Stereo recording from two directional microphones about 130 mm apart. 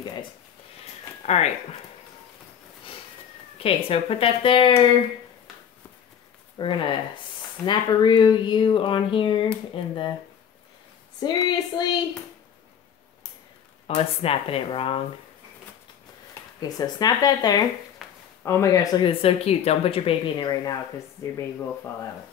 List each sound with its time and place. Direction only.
1.2 s speech: 60° left (ahead or behind)
3.5 s speech: 45° left (ahead or behind)
6.6 s speech: 40° left (ahead or behind)
11.1 s speech: 35° left (ahead or behind)
13.8 s speech: 50° left (ahead or behind)
16.6 s speech: 30° left (ahead or behind)
18.0 s a sound: 5° right (ahead or behind)
18.4 s speech: 20° left (ahead or behind)
18.9 s speech: 45° left (ahead or behind)
21.4 s speech: 20° left (ahead or behind)